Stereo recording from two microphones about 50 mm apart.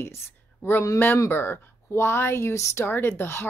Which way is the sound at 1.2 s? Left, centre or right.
Left.